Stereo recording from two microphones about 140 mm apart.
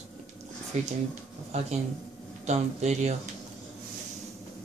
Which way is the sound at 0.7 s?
55° right (ahead or behind).